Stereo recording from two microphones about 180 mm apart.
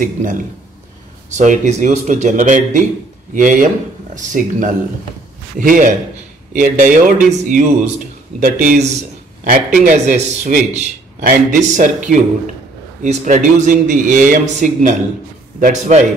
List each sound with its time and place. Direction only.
0.0 s a man's voice: 45° right (ahead or behind)